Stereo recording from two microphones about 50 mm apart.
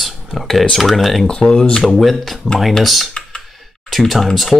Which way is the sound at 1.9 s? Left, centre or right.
Centre.